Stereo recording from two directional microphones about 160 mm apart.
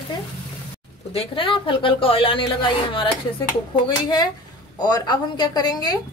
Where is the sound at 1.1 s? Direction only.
35° left (ahead or behind).